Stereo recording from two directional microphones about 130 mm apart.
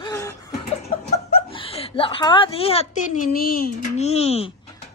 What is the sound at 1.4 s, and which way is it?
Speech, 45° left (ahead or behind).